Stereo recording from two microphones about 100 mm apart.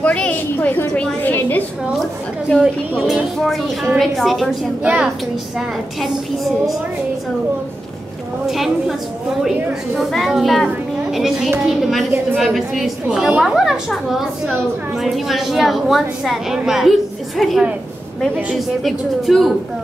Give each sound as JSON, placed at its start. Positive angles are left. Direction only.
{"t": 0.0, "sound": "a woman's voice", "side_deg": 15}
{"t": 2.6, "sound": "a woman's voice", "side_deg": 0}
{"t": 4.8, "sound": "a woman's voice", "side_deg": -10}
{"t": 8.5, "sound": "a woman's voice", "side_deg": 0}
{"t": 18.9, "sound": "a woman's voice", "side_deg": 0}